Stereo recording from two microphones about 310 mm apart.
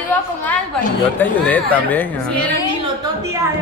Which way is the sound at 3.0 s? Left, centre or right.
Centre.